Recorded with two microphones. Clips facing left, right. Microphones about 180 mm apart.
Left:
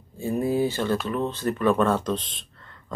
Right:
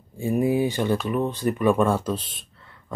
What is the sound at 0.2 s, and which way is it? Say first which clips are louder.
Speech: right 2 dB; 15° right (ahead or behind).